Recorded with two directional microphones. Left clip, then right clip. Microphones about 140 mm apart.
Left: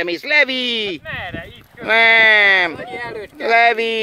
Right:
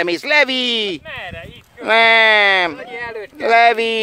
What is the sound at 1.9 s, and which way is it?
Speech, 25° right (ahead or behind).